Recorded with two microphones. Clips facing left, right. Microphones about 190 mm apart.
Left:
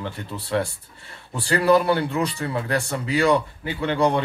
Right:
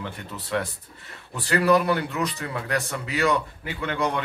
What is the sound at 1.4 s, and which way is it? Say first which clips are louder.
Speech: left 2 dB; 30° left (ahead or behind).